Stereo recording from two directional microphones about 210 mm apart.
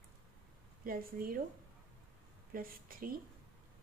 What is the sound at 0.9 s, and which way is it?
Speech, 45° right (ahead or behind).